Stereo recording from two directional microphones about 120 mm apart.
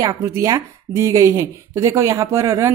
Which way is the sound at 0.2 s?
25° right (ahead or behind).